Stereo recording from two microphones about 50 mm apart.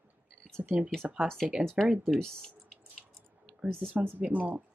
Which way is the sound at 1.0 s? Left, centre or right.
Right.